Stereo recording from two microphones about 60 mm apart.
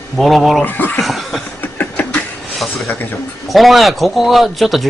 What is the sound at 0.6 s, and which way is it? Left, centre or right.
Speech, left.